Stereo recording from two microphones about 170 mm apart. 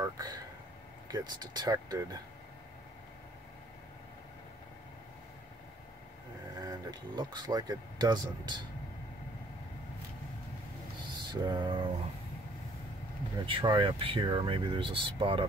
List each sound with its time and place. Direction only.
0.0 s speech: 20° right (ahead or behind)
6.6 s speech: 25° right (ahead or behind)
11.1 s music: 25° right (ahead or behind)
13.5 s speech: 30° right (ahead or behind)